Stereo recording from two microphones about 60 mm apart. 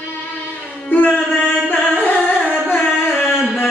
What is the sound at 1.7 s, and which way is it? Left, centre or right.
Carnatic music, left.